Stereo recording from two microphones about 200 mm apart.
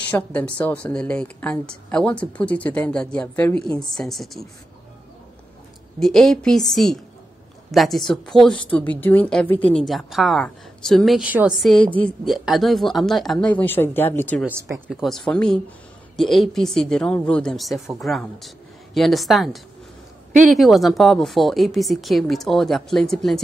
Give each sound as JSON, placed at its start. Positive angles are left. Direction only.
{"t": 0.1, "sound": "a woman's voice", "side_deg": 5}
{"t": 5.9, "sound": "a woman's voice", "side_deg": 0}
{"t": 14.4, "sound": "speech", "side_deg": -15}
{"t": 14.9, "sound": "a woman's voice", "side_deg": 0}